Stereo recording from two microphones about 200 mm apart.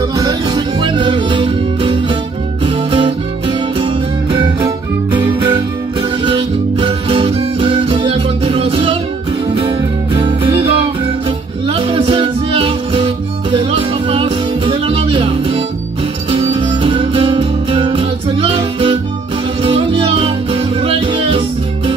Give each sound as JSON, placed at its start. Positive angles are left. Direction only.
{"t": 0.2, "sound": "music", "side_deg": -20}